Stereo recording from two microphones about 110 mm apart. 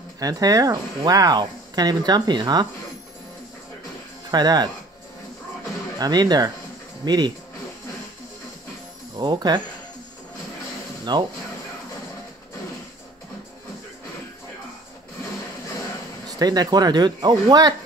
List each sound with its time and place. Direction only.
0.2 s speech: 35° right (ahead or behind)
4.3 s speech: 40° right (ahead or behind)
5.9 s speech: 40° right (ahead or behind)
9.1 s speech: 40° right (ahead or behind)
11.1 s speech: 40° right (ahead or behind)
16.3 s speech: 35° right (ahead or behind)